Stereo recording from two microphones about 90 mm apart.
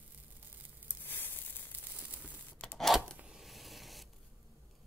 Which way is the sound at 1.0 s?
25° left (ahead or behind).